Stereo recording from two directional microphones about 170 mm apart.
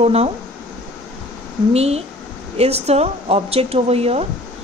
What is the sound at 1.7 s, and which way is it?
Speech, 35° right (ahead or behind).